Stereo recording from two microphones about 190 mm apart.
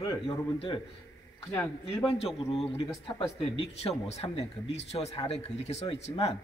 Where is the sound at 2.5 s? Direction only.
30° left (ahead or behind).